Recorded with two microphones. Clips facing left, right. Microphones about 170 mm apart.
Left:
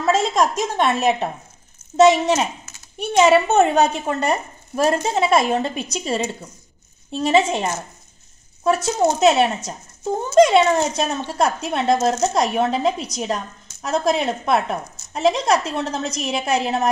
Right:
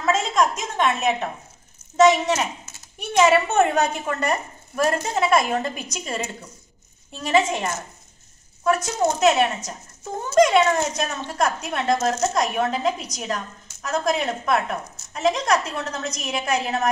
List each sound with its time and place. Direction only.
0.0 s speech: 35° left (ahead or behind)